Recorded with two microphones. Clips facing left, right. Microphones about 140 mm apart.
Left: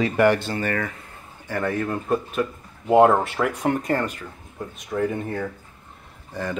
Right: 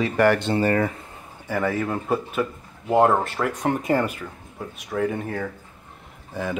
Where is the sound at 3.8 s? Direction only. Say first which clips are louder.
Right 2 dB; 10° right (ahead or behind).